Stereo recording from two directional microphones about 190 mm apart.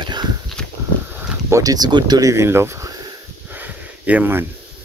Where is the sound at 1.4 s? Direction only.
15° right (ahead or behind).